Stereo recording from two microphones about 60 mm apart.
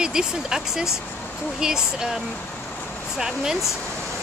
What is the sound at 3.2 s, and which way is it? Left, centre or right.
Speech, centre.